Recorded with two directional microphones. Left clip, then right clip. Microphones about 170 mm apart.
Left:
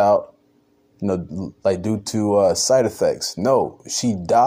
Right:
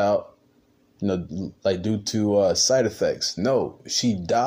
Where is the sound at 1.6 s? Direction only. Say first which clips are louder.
Left 4 dB; 25° left (ahead or behind).